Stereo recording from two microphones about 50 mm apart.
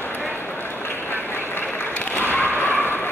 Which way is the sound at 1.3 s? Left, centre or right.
Left.